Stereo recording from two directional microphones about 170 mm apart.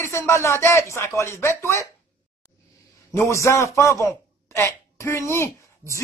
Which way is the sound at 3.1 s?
15° left (ahead or behind).